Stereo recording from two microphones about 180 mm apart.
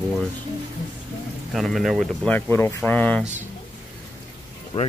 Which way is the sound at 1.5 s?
Centre (ahead or behind).